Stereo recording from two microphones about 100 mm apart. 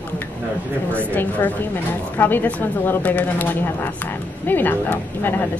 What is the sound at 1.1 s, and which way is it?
A woman's voice, 15° left (ahead or behind).